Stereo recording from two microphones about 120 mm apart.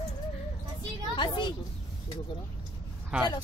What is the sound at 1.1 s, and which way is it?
Speech, 40° left (ahead or behind).